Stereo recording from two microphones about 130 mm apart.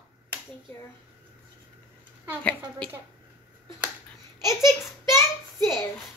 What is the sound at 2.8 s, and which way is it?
Speech, 10° left (ahead or behind).